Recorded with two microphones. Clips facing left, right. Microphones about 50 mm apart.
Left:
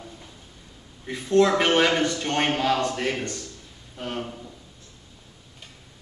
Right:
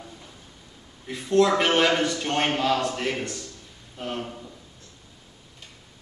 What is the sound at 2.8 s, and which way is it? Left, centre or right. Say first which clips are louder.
Speech: left 1 dB; centre.